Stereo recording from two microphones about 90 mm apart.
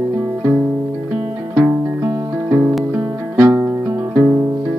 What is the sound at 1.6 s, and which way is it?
Music, 30° right (ahead or behind).